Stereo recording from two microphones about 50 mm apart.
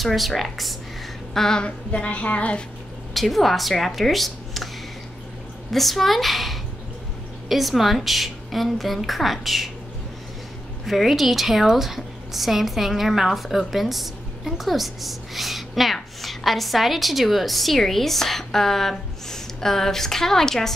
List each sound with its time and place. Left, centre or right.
0.0 s speech: centre
1.9 s a woman's voice: left
3.2 s speech: centre
5.7 s a woman's voice: centre
10.9 s speech: centre